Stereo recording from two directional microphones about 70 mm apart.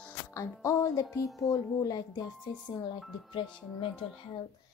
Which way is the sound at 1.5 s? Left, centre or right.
Left.